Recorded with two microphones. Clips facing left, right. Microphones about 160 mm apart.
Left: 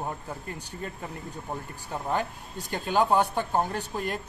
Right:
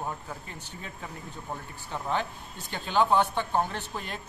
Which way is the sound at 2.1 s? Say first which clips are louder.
Left 1 dB; 45° left (ahead or behind).